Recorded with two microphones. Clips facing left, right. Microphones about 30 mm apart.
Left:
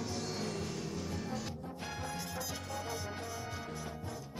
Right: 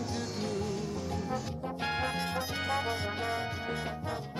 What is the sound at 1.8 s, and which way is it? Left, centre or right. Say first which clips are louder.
Music: right 10 dB; right.